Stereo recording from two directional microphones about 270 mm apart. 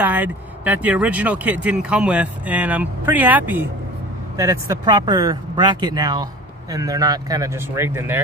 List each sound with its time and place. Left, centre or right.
0.0 s speech: centre